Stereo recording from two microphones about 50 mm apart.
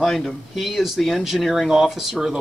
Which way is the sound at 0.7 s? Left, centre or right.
Centre.